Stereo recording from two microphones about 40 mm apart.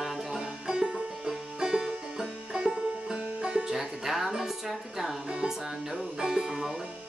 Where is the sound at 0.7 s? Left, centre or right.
Centre.